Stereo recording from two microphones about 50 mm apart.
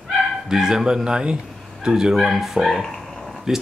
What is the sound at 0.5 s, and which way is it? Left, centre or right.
Speech, centre.